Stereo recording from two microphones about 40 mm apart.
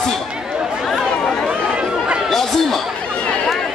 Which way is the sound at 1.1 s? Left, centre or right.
Left.